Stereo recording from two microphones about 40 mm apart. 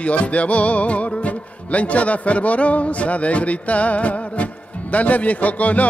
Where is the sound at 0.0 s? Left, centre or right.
Left.